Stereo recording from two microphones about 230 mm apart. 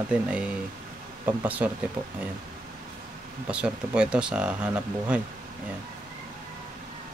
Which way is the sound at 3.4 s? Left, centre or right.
Centre.